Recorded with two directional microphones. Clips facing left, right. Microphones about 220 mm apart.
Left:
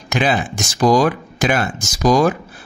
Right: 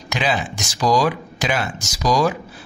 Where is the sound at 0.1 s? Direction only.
50° left (ahead or behind).